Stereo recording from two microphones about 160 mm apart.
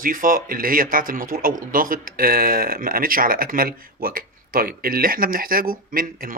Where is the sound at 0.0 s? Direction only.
60° right (ahead or behind).